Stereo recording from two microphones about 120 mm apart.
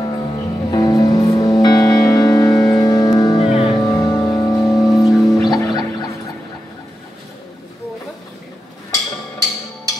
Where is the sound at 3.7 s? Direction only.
35° left (ahead or behind).